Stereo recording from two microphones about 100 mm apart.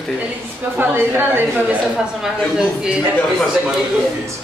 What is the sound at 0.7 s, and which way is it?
A woman's voice, 25° right (ahead or behind).